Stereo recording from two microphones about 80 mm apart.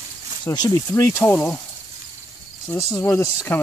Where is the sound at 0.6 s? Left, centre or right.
Left.